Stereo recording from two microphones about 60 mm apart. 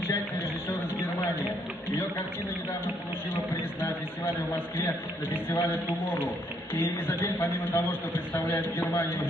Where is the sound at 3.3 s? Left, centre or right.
Left.